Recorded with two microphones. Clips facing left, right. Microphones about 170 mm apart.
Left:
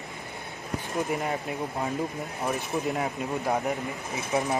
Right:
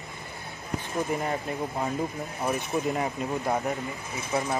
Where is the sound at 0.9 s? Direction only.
Centre (ahead or behind).